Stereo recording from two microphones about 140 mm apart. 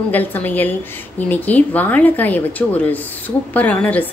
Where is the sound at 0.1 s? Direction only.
10° left (ahead or behind).